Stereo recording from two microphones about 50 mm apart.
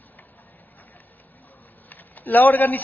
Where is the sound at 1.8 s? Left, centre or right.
Left.